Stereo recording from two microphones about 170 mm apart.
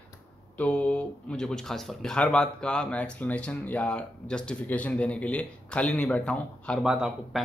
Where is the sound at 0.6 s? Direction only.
10° left (ahead or behind).